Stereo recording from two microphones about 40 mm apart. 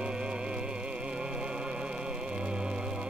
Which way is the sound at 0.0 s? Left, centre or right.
Right.